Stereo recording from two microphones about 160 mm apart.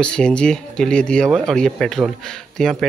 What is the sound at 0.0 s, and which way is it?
Speech, 5° left (ahead or behind).